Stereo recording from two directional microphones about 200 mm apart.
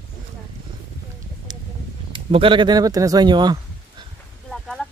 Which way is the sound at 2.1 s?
25° right (ahead or behind).